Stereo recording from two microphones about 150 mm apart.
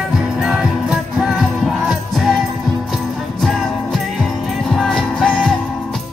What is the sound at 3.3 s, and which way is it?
Music, centre (ahead or behind).